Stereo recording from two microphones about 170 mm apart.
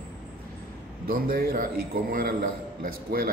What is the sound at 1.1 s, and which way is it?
A man's voice, 60° right (ahead or behind).